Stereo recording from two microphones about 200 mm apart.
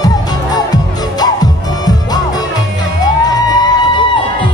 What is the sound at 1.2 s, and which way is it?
Music, 20° left (ahead or behind).